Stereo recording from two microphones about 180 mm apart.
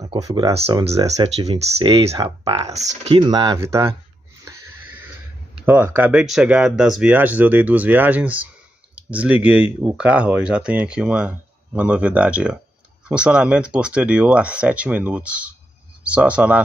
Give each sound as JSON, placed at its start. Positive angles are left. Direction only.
{"t": 0.0, "sound": "speech", "side_deg": -20}
{"t": 0.5, "sound": "speech", "side_deg": -35}
{"t": 2.7, "sound": "speech", "side_deg": -40}
{"t": 3.2, "sound": "speech", "side_deg": -25}
{"t": 5.7, "sound": "speech", "side_deg": -10}